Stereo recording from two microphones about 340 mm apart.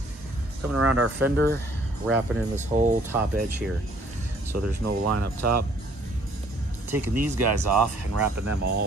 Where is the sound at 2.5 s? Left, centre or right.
Right.